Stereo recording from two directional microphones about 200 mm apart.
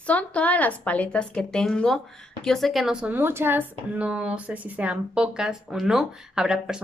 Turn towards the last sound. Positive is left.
turn(degrees=-5)  # may be behind; listen again after turning